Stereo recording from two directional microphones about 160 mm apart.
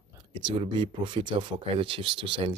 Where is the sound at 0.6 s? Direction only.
30° right (ahead or behind).